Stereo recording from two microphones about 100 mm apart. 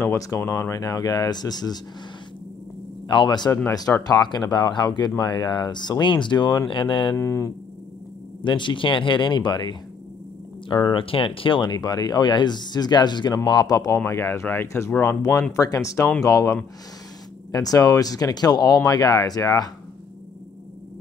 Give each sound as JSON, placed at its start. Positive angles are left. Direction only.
{"t": 0.0, "sound": "speech", "side_deg": 25}
{"t": 3.1, "sound": "speech", "side_deg": 50}
{"t": 7.2, "sound": "speech", "side_deg": 30}
{"t": 8.5, "sound": "speech", "side_deg": 55}
{"t": 15.5, "sound": "speech", "side_deg": 35}